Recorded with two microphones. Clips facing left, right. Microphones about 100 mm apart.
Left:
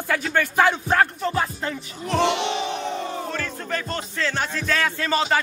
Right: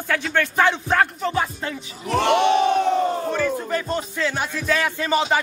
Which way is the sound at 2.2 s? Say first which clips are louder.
Right 6 dB; 50° right (ahead or behind).